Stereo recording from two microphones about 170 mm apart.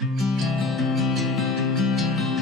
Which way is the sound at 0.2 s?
Centre (ahead or behind).